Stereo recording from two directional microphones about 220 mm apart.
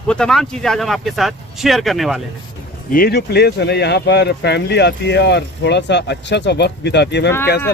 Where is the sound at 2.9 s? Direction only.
45° left (ahead or behind).